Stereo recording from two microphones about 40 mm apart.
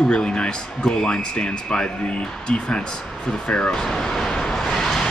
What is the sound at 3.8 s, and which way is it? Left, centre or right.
Vehicle, centre.